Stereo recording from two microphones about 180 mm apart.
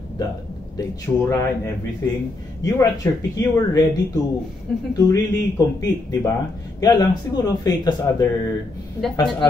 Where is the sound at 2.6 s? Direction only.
20° left (ahead or behind).